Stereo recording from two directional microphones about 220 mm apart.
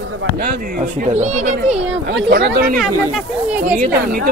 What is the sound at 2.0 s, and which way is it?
Speech, 50° right (ahead or behind).